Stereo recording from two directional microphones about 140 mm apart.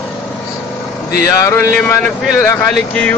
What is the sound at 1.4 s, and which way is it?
Speech, 15° left (ahead or behind).